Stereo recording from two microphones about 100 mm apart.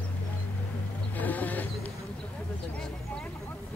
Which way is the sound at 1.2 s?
15° left (ahead or behind).